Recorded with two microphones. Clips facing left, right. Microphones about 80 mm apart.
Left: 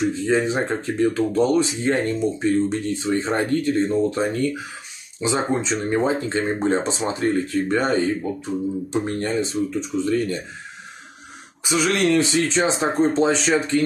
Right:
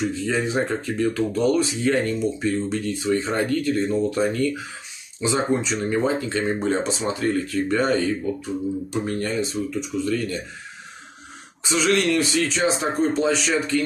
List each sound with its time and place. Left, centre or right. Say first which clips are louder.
0.1 s speech: left 3 dB; left
11.7 s speech: left 1 dB; left